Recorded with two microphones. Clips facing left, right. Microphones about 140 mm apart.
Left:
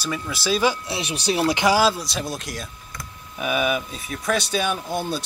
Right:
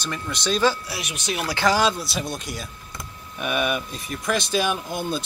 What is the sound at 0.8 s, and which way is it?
Speech, 30° left (ahead or behind).